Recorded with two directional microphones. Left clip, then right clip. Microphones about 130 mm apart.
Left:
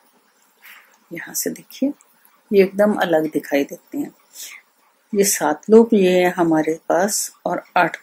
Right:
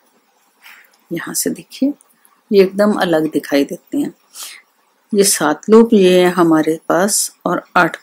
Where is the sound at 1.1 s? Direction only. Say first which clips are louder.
Right 6 dB; 40° right (ahead or behind).